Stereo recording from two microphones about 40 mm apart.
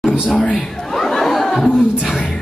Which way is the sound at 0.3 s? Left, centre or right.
Centre.